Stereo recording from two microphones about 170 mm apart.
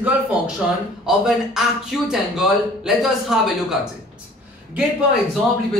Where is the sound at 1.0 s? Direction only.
5° right (ahead or behind).